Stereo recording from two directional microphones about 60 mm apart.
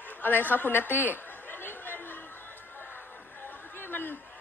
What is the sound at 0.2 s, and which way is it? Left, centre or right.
Chatter, left.